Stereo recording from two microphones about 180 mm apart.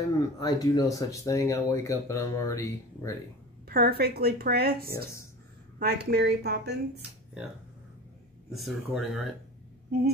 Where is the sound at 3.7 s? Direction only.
60° right (ahead or behind).